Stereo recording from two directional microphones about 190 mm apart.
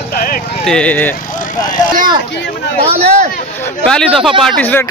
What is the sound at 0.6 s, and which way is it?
Speech, 5° left (ahead or behind).